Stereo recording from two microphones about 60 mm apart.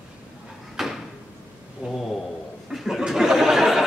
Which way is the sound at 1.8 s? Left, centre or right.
Centre.